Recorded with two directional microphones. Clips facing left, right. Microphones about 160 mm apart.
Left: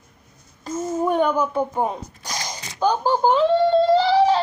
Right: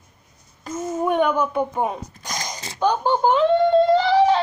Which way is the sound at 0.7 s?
Centre (ahead or behind).